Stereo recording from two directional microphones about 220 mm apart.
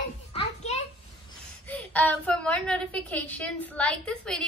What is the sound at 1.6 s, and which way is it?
A woman's voice, 5° left (ahead or behind).